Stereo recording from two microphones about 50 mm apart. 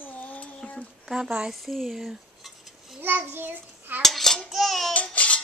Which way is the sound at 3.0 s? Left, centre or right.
Right.